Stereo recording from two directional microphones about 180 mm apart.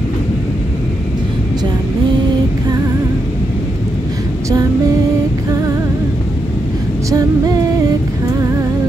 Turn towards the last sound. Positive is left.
turn(degrees=-20)  # may be behind; listen again after turning